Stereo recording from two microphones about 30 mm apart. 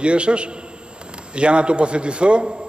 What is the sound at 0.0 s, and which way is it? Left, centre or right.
A man's voice, right.